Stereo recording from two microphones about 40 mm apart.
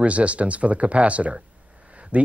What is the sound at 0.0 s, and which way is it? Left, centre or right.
Speech, right.